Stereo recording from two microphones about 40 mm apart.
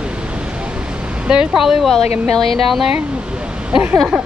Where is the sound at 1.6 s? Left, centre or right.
Centre.